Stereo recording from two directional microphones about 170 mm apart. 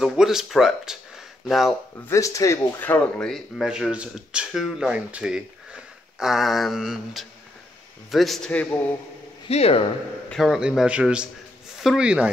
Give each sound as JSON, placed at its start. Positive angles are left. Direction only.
{"t": 0.0, "sound": "speech", "side_deg": 0}
{"t": 2.0, "sound": "a man's voice", "side_deg": 20}
{"t": 9.5, "sound": "speech", "side_deg": 35}
{"t": 10.3, "sound": "speech", "side_deg": 0}